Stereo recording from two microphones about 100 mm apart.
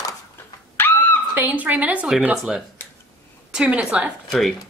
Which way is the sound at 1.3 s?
15° right (ahead or behind).